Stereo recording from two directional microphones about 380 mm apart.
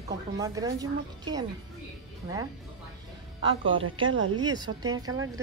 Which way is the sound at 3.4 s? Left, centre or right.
Centre.